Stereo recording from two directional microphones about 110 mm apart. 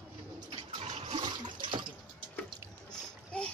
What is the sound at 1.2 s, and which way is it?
Water, 45° right (ahead or behind).